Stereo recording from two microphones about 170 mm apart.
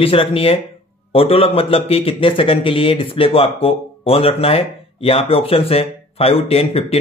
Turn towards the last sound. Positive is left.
turn(degrees=35)  # may be behind; listen again after turning